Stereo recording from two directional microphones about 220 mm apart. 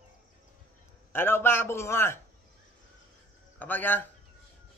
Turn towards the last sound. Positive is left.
turn(degrees=10)  # may be behind; listen again after turning